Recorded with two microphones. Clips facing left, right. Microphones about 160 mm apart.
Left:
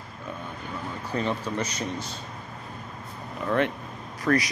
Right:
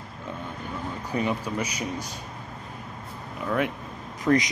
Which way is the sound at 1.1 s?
10° right (ahead or behind).